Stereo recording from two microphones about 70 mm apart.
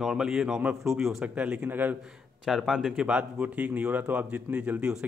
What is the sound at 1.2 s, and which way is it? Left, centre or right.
Speech, right.